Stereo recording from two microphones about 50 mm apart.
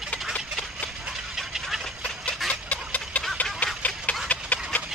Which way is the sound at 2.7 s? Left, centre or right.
Left.